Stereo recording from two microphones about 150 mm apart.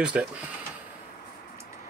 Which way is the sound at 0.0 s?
5° right (ahead or behind).